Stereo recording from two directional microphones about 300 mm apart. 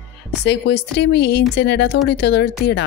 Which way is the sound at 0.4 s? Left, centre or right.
Left.